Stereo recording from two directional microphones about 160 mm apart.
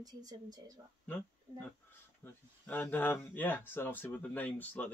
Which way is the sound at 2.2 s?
10° left (ahead or behind).